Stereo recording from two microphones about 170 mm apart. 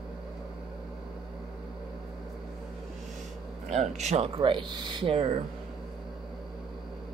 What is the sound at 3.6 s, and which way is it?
Speech, 40° right (ahead or behind).